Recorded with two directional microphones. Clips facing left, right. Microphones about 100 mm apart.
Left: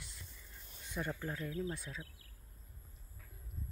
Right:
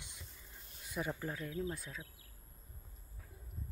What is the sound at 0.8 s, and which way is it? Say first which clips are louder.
Speech: right 1 dB; 5° right (ahead or behind).